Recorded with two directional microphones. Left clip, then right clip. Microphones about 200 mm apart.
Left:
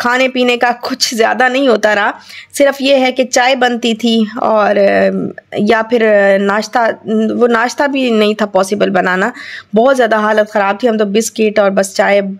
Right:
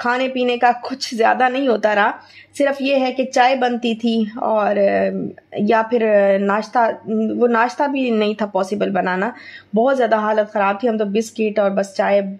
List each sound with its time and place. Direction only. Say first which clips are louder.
0.0 s speech: left 7 dB; 20° left (ahead or behind)